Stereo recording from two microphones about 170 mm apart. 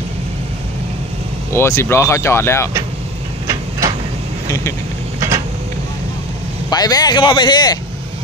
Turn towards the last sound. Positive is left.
turn(degrees=25)  # may be behind; listen again after turning